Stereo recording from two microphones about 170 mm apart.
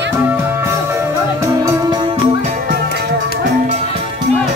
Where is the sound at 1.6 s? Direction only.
25° right (ahead or behind).